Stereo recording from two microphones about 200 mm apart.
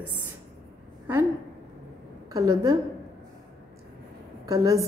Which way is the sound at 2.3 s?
15° right (ahead or behind).